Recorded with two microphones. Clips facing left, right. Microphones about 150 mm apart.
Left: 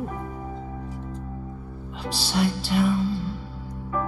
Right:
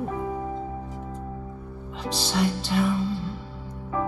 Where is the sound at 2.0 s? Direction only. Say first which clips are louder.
Even; 5° left (ahead or behind).